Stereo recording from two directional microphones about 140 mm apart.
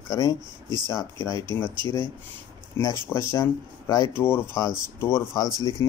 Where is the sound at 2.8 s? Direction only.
20° left (ahead or behind).